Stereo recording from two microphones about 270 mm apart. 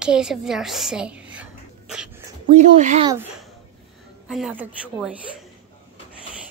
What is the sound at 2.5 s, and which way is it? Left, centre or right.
Speech, right.